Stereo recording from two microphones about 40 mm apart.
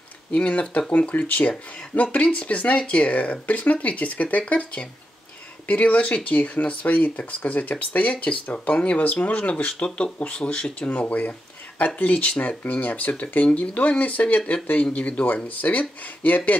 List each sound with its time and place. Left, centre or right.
0.3 s speech: left